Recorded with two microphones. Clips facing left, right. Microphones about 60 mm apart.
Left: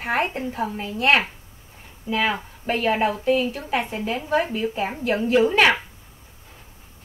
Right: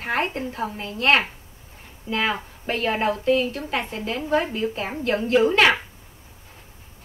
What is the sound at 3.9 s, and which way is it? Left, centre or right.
Speech, left.